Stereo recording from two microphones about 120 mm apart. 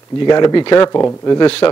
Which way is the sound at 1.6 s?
35° left (ahead or behind).